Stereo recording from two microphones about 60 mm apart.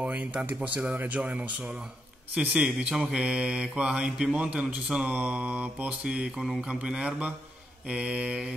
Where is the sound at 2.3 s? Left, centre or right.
Centre.